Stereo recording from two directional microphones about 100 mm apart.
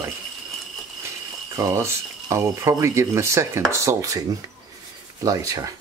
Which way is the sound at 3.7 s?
30° right (ahead or behind).